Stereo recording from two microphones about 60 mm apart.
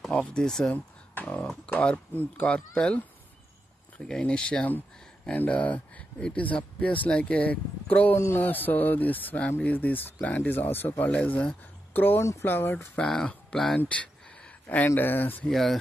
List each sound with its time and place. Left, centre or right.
0.1 s speech: centre
4.0 s speech: centre; by 12.2 s left
12.2 s speech: left
12.9 s speech: centre
13.7 s a sound: left
15.0 s speech: left
15.4 s speech: centre